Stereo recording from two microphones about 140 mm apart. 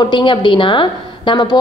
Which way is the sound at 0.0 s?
35° left (ahead or behind).